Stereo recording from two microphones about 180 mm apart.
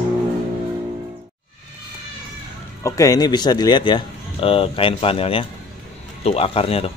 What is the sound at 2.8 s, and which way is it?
A man's voice, 20° left (ahead or behind).